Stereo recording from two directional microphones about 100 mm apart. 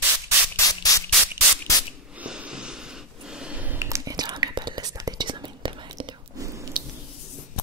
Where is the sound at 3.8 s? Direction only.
30° right (ahead or behind).